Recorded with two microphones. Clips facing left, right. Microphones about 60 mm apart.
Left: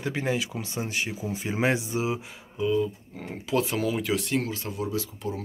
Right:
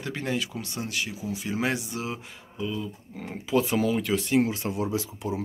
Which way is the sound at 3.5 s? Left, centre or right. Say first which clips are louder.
Right 2 dB; centre.